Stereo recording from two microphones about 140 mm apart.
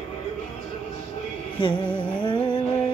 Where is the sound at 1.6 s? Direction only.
35° left (ahead or behind).